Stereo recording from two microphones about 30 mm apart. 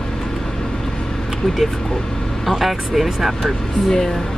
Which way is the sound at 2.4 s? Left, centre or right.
Centre.